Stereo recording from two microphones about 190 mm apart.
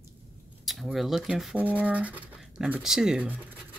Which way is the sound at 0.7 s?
Centre (ahead or behind).